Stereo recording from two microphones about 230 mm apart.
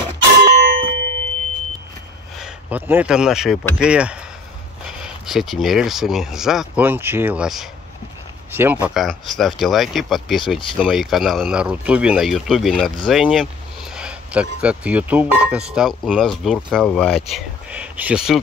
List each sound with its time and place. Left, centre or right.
0.6 s clang: right
2.4 s speech: centre